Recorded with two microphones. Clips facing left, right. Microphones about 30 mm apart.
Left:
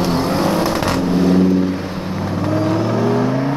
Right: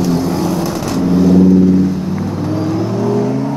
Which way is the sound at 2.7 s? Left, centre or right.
Left.